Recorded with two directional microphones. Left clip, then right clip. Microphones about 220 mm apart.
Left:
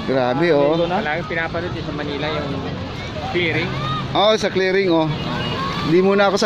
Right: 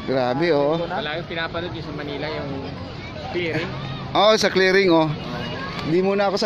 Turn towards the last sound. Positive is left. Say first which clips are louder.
# left 5 dB
turn(degrees=0)  # may be behind; listen again after turning